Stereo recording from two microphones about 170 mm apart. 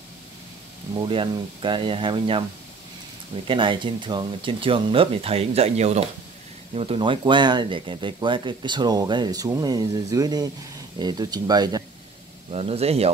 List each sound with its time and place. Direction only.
0.9 s speech: 30° right (ahead or behind)
3.4 s speech: 30° right (ahead or behind)
12.5 s speech: 35° right (ahead or behind)